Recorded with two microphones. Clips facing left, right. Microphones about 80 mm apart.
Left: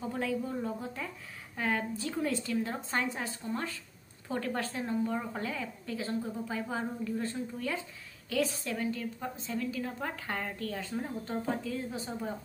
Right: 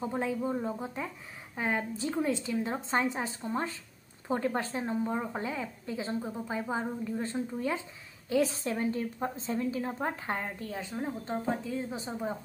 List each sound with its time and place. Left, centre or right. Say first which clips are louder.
0.0 s a woman's voice: right 2 dB; right